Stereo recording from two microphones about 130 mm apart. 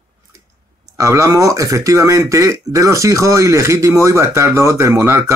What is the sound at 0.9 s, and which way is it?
Speech, 20° right (ahead or behind).